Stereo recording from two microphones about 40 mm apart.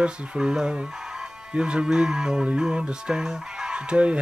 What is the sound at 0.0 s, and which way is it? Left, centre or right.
Speech, right.